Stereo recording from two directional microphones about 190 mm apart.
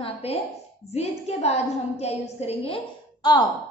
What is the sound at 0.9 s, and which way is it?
A woman's voice, 35° left (ahead or behind).